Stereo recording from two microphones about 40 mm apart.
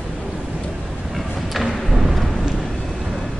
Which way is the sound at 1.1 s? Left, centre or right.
Centre.